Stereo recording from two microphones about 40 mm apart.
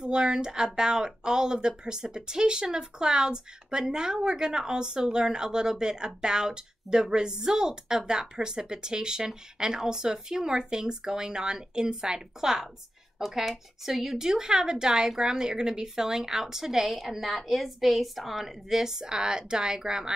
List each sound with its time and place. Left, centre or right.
0.0 s a woman's voice: centre